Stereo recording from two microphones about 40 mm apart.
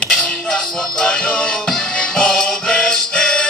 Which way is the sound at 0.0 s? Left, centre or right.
Left.